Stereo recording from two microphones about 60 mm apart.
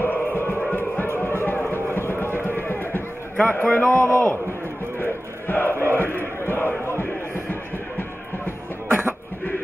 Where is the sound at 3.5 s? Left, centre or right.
Left.